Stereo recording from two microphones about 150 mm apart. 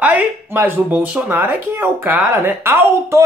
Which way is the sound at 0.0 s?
10° right (ahead or behind).